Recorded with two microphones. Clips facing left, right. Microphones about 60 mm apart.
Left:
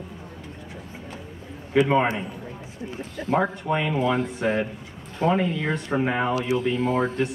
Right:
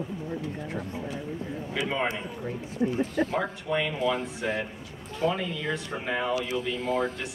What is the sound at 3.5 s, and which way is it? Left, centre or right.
Speech, left.